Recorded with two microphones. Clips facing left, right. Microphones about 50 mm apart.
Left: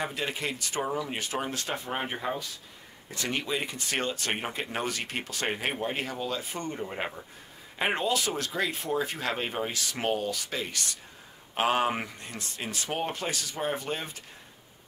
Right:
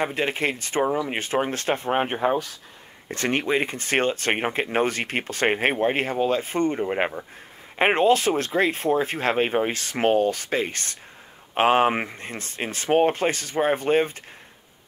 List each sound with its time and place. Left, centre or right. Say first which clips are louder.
0.0 s speech: right 8 dB; right